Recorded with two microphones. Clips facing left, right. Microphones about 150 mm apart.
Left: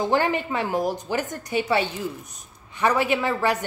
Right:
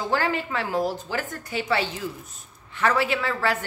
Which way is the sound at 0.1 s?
20° left (ahead or behind).